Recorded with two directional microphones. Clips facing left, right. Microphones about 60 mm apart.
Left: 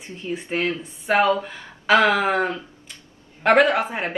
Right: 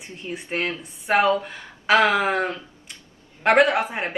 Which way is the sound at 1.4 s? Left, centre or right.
Centre.